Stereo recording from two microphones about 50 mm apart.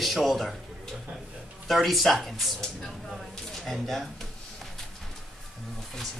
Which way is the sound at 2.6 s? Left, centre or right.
Centre.